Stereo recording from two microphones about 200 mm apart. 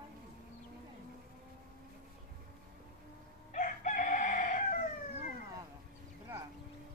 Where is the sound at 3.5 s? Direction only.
40° left (ahead or behind).